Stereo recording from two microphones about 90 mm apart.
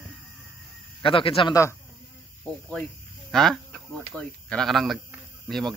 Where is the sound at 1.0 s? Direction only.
80° left.